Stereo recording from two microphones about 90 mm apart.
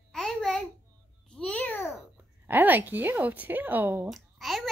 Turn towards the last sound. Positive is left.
turn(degrees=0)  # may be behind; listen again after turning